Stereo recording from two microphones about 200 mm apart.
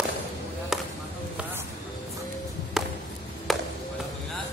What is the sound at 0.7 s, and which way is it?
Chop, centre (ahead or behind).